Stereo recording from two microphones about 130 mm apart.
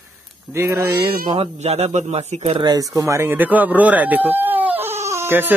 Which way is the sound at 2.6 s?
25° right (ahead or behind).